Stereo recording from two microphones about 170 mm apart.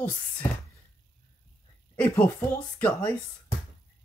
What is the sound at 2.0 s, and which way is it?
Speech, 10° left (ahead or behind).